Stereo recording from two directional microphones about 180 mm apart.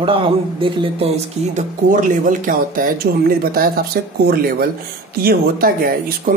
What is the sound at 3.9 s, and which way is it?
Speech, 65° right (ahead or behind).